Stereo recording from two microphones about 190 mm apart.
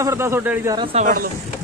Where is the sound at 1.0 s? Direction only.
45° right (ahead or behind).